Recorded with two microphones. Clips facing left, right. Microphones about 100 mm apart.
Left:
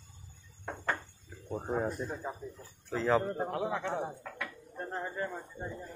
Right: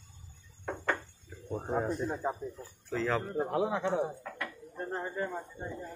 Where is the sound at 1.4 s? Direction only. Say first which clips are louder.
Even; 5° left (ahead or behind).